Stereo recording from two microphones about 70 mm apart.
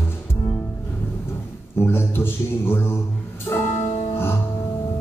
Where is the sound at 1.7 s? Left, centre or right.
Left.